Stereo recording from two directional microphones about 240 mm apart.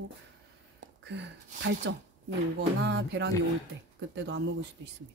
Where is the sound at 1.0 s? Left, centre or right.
Right.